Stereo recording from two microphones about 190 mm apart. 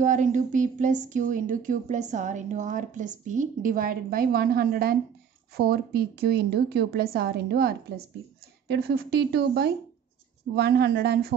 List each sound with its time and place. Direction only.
0.0 s speech: 40° right (ahead or behind); by 11.3 s 60° right (ahead or behind)